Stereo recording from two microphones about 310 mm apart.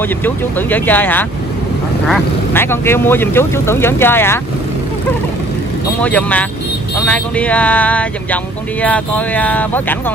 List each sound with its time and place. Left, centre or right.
0.2 s speech: centre
5.9 s speech: centre